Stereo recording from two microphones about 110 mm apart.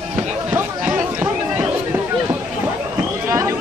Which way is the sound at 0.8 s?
15° right (ahead or behind).